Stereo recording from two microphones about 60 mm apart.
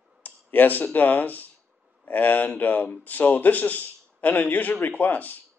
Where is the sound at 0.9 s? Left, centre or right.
Left.